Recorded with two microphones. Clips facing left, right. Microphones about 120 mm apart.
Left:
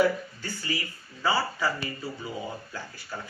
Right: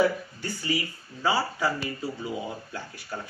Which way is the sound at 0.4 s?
15° right (ahead or behind).